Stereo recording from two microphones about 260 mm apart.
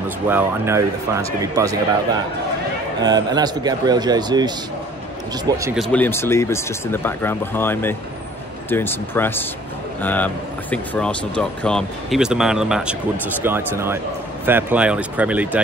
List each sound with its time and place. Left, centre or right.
0.3 s speech: centre
3.0 s speech: centre
5.8 s speech: centre